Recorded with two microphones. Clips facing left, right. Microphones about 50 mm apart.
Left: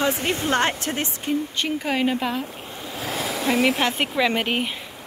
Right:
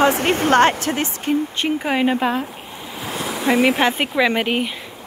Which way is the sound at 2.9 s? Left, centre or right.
Centre.